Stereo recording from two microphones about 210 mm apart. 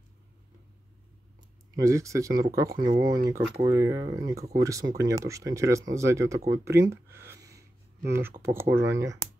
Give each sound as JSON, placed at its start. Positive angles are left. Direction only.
{"t": 1.8, "sound": "speech", "side_deg": -15}